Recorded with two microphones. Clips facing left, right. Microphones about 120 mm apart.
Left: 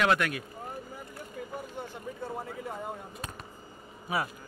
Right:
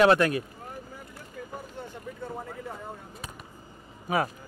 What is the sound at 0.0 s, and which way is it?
Speech, 35° right (ahead or behind).